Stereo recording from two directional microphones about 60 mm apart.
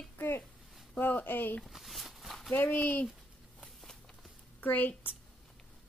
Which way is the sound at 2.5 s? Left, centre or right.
Left.